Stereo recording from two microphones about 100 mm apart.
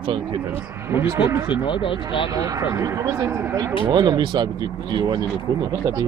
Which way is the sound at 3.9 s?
45° right (ahead or behind).